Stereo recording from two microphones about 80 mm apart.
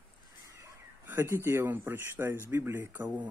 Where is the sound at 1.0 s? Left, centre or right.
Right.